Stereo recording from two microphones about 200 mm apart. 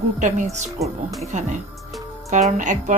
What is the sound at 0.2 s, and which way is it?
Speech, 35° right (ahead or behind).